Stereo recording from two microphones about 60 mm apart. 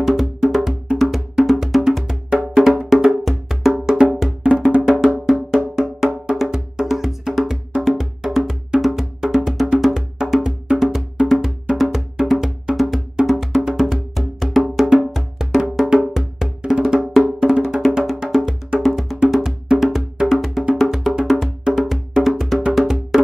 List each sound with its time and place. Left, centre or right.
0.1 s music: centre
5.6 s music: centre
19.7 s wood block: centre
20.7 s music: centre